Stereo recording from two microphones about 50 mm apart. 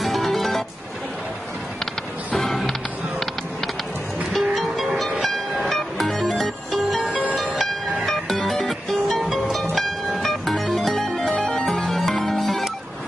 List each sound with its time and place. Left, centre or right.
0.0 s music: centre
2.3 s music: centre
4.3 s music: centre
7.1 s music: right
7.5 s music: centre